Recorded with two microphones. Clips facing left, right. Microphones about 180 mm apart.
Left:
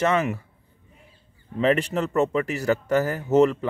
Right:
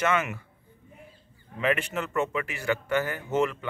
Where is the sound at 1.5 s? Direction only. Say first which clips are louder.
Left 6 dB; 35° left (ahead or behind).